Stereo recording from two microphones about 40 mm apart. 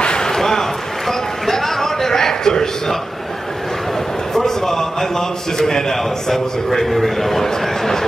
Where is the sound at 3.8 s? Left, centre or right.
Centre.